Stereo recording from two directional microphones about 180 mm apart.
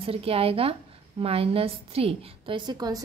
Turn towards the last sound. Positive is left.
turn(degrees=-20)  # may be behind; listen again after turning